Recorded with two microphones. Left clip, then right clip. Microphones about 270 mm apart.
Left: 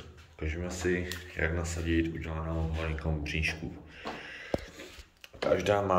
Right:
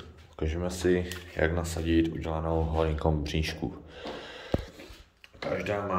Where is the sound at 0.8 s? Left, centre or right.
Centre.